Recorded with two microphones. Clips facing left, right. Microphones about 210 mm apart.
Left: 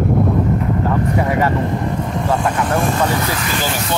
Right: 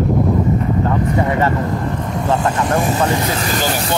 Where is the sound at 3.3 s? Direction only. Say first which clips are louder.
Right 2 dB; 40° right (ahead or behind).